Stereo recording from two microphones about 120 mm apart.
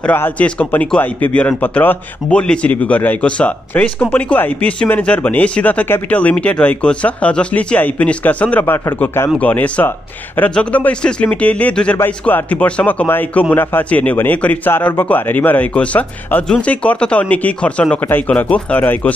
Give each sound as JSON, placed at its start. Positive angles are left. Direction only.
{"t": 0.0, "sound": "a man's voice", "side_deg": 15}